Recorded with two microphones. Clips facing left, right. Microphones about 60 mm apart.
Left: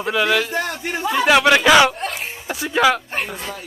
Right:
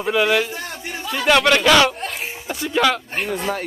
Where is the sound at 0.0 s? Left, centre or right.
Centre.